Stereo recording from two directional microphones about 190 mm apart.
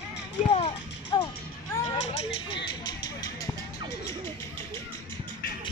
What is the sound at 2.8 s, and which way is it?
Vehicle, 20° left (ahead or behind).